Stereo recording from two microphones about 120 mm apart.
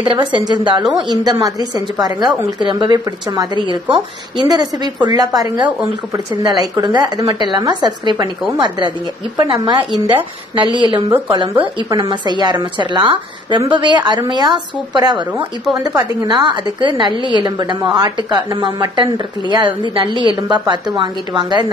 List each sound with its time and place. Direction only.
0.0 s a woman's voice: 45° right (ahead or behind)